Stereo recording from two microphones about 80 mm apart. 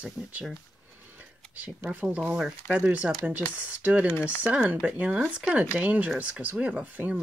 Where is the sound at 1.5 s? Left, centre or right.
Right.